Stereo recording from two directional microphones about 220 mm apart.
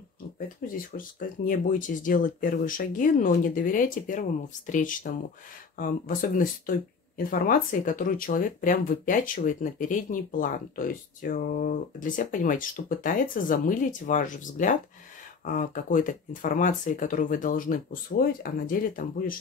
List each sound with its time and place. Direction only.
0.7 s speech: 40° left (ahead or behind)